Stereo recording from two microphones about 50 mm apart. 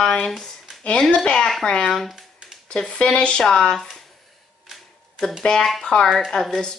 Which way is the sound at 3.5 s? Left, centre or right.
Centre.